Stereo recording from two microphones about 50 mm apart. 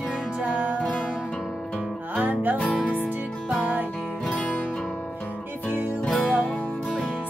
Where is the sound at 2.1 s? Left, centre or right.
Right.